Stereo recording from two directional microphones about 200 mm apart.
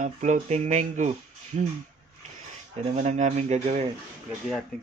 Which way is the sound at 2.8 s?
35° right (ahead or behind).